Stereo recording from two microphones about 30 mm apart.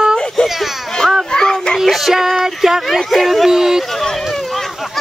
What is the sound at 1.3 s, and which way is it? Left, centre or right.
Music, left.